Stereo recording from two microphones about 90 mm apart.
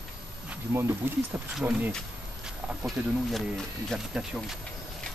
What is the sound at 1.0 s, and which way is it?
Speech, 25° right (ahead or behind).